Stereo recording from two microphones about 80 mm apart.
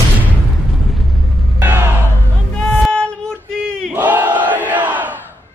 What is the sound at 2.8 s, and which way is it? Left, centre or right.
Music, centre.